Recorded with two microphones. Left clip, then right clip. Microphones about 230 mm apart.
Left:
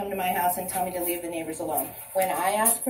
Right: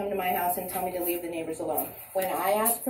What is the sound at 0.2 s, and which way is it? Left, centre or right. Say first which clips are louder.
A woman's voice: left 5 dB; left.